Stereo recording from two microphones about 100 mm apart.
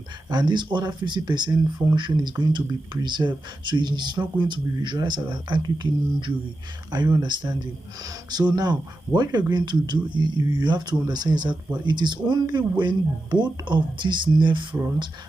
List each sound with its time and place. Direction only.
0.3 s speech: 45° right (ahead or behind)